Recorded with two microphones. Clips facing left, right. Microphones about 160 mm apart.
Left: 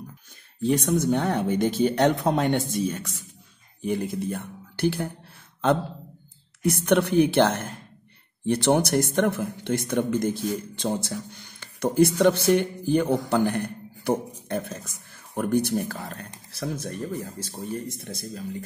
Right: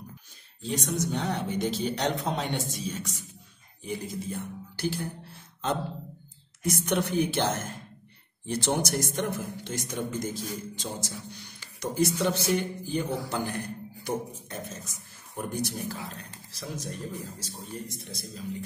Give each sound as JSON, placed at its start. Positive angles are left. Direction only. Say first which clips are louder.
{"t": 0.6, "sound": "speech", "louder": "left 8 dB", "side_deg": 60}
{"t": 6.6, "sound": "speech", "louder": "left 6 dB", "side_deg": 60}